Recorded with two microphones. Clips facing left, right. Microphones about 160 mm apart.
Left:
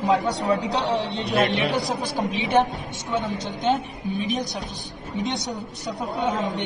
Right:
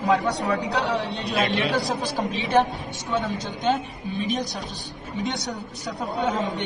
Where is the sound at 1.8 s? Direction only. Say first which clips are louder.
Even; centre (ahead or behind).